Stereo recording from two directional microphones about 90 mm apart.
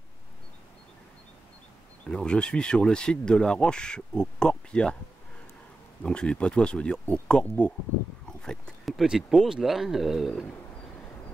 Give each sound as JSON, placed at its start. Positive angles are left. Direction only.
{"t": 2.0, "sound": "speech", "side_deg": 10}
{"t": 6.0, "sound": "speech", "side_deg": 10}